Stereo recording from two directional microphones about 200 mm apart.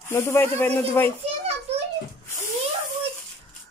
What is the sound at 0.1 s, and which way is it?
A child's voice, 10° left (ahead or behind).